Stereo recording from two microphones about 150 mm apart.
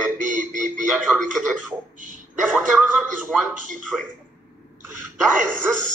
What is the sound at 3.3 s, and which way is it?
Speech, 15° right (ahead or behind).